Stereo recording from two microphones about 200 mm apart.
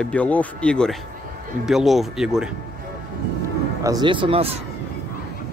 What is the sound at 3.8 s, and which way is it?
Speech, 20° right (ahead or behind).